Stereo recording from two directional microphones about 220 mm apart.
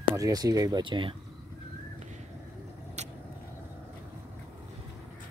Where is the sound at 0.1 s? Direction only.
15° right (ahead or behind).